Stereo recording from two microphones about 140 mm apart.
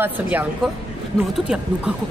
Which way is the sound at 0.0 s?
15° right (ahead or behind).